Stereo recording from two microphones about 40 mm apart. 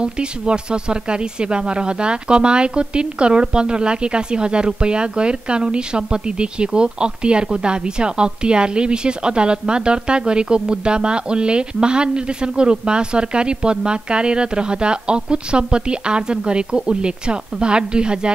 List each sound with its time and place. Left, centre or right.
0.0 s a woman's voice: right